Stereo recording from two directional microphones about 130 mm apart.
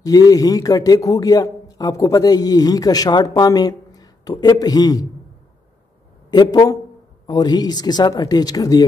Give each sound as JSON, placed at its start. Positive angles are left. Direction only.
{"t": 0.0, "sound": "a man's voice", "side_deg": 30}
{"t": 6.3, "sound": "a man's voice", "side_deg": 30}